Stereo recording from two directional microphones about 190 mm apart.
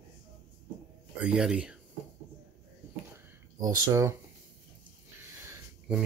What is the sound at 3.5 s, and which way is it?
Speech, 20° right (ahead or behind).